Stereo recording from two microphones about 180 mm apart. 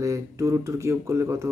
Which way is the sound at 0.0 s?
20° right (ahead or behind).